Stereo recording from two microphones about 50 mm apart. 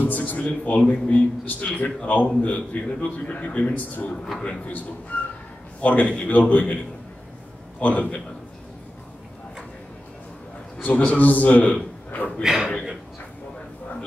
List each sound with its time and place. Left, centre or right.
0.0 s a man's voice: left
5.1 s a sound: left
5.8 s a man's voice: left
7.8 s speech: left
10.8 s a man's voice: left
12.4 s speech: centre